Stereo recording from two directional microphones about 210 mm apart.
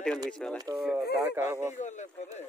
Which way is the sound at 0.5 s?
20° right (ahead or behind).